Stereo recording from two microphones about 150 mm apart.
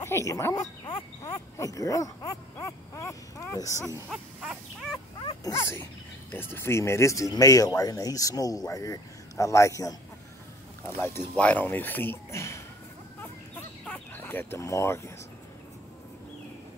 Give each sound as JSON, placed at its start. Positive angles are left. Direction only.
{"t": 0.0, "sound": "speech", "side_deg": 20}
{"t": 4.1, "sound": "a sound", "side_deg": 0}
{"t": 5.4, "sound": "speech", "side_deg": 20}
{"t": 11.0, "sound": "speech", "side_deg": 10}
{"t": 13.8, "sound": "speech", "side_deg": 10}